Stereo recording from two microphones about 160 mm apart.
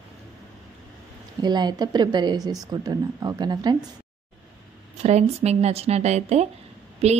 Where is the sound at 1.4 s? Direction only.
25° right (ahead or behind).